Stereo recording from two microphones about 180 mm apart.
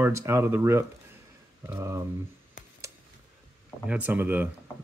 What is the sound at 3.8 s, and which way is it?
Speech, 10° right (ahead or behind).